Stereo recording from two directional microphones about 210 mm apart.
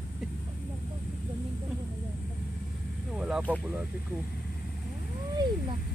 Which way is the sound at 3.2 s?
5° right (ahead or behind).